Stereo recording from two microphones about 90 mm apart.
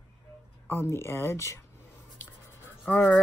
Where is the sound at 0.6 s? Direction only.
25° left (ahead or behind).